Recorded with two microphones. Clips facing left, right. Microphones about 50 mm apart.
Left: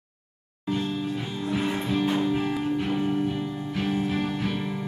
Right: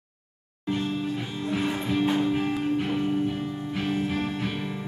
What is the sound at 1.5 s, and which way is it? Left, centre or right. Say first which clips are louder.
Music: even; centre.